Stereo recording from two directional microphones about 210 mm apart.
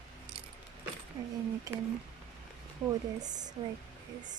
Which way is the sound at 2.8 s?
20° right (ahead or behind).